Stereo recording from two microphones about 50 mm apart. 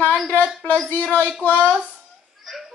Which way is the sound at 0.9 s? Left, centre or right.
Left.